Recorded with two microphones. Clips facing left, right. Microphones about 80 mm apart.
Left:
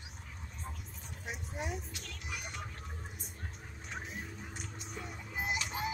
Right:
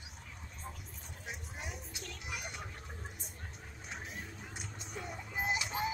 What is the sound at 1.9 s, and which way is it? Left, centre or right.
Music, centre.